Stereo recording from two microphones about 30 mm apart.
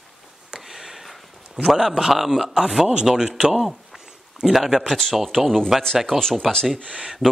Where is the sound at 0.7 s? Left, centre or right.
Centre.